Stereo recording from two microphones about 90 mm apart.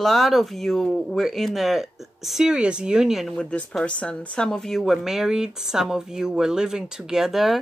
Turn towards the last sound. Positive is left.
turn(degrees=0)  # may be behind; listen again after turning